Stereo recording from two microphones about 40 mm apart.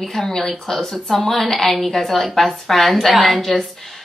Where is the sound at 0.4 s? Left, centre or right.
Centre.